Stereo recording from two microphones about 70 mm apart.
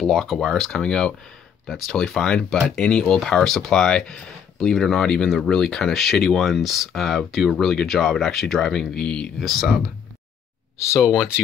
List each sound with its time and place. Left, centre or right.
0.0 s speech: centre
9.4 s speech: centre
11.0 s speech: centre